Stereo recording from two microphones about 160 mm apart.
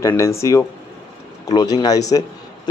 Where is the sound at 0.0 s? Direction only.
15° left (ahead or behind).